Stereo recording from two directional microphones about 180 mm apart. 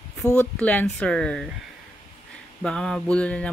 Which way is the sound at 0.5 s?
5° left (ahead or behind).